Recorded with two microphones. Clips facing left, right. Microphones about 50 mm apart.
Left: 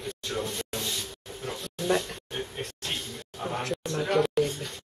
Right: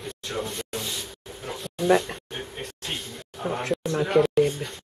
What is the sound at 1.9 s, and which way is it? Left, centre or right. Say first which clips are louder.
Speech: right 6 dB; right.